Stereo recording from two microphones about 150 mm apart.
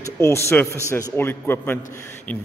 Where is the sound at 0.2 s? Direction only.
15° left (ahead or behind).